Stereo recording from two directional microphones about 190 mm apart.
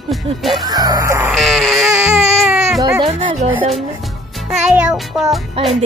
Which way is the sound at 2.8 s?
20° right (ahead or behind).